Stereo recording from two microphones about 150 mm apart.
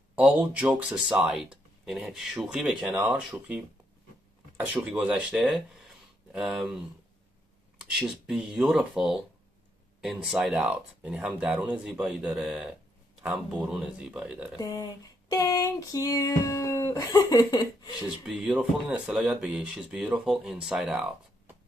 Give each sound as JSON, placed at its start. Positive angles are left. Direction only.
{"t": 0.1, "sound": "speech", "side_deg": -10}
{"t": 7.8, "sound": "speech", "side_deg": 0}
{"t": 14.6, "sound": "a sound", "side_deg": 25}
{"t": 18.0, "sound": "speech", "side_deg": -5}